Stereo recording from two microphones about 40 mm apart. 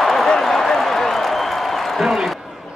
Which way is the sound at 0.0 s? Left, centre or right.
Centre.